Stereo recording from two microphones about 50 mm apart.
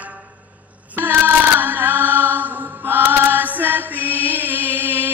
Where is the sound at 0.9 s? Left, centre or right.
Right.